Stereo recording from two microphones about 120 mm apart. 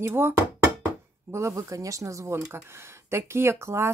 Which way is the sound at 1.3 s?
25° right (ahead or behind).